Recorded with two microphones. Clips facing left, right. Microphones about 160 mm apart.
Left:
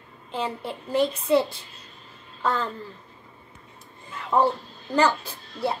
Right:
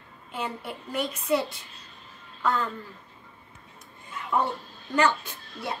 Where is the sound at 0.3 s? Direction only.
30° left (ahead or behind).